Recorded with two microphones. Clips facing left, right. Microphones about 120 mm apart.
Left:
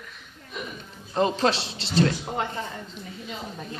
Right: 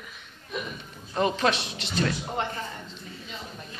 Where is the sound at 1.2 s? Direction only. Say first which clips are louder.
Left 2 dB; 30° left (ahead or behind).